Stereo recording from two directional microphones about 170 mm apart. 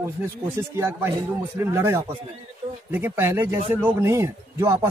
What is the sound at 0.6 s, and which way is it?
Speech, 15° right (ahead or behind).